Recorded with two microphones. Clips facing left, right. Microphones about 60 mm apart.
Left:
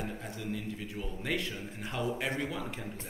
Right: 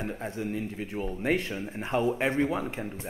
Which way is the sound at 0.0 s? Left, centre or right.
Right.